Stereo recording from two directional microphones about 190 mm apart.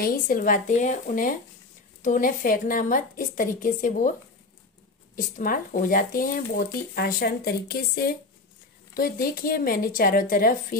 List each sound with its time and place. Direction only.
0.0 s speech: 45° left (ahead or behind)
5.1 s speech: 45° left (ahead or behind)